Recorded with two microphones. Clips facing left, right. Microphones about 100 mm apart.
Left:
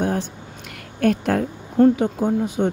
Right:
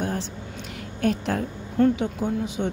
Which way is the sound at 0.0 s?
50° left (ahead or behind).